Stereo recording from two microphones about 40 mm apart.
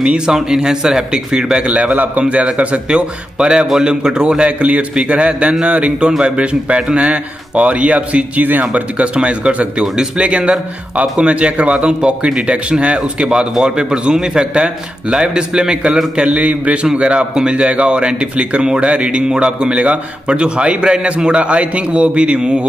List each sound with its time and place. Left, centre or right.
0.3 s speech: centre
1.7 s a man's voice: right
4.5 s a man's voice: right
16.3 s a man's voice: right